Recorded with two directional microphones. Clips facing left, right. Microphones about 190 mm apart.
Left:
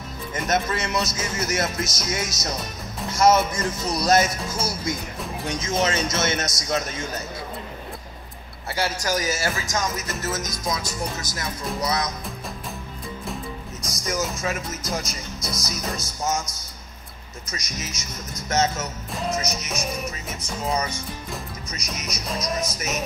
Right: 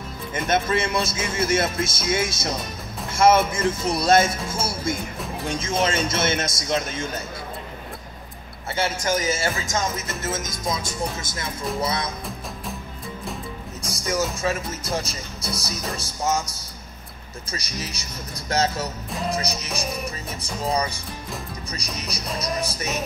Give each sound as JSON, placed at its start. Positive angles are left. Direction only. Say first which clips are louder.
{"t": 0.5, "sound": "speech", "louder": "right 2 dB", "side_deg": -30}
{"t": 8.7, "sound": "speech", "louder": "right 1 dB", "side_deg": -25}
{"t": 13.8, "sound": "speech", "louder": "right 2 dB", "side_deg": -30}
{"t": 20.0, "sound": "music", "louder": "even", "side_deg": 0}
{"t": 21.6, "sound": "speech", "louder": "right 1 dB", "side_deg": -35}
{"t": 22.2, "sound": "music", "louder": "even", "side_deg": 0}
{"t": 22.6, "sound": "speech", "louder": "even", "side_deg": -30}